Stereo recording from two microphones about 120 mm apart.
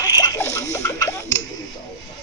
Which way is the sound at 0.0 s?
30° left (ahead or behind).